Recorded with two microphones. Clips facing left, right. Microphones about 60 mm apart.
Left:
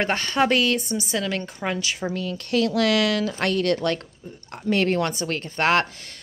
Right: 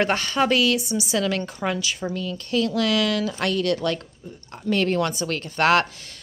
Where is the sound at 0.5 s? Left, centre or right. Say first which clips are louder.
Right 1 dB; left.